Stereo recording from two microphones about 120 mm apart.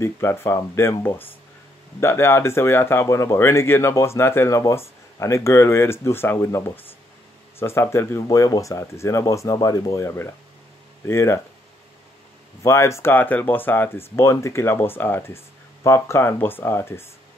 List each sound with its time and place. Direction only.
0.0 s speech: 20° left (ahead or behind)
12.6 s speech: 25° left (ahead or behind)